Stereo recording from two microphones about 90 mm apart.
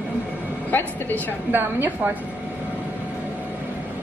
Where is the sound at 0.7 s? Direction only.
20° left (ahead or behind).